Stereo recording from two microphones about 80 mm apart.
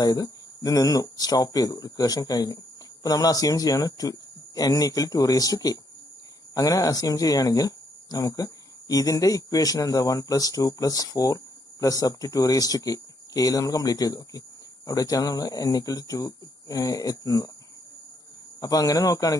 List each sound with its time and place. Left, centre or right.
0.0 s speech: left
18.6 s speech: left